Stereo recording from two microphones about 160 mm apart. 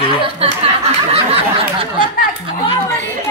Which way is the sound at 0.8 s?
40° right (ahead or behind).